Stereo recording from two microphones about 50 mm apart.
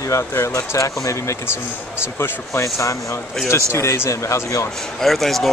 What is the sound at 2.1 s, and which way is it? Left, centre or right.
Speech, left.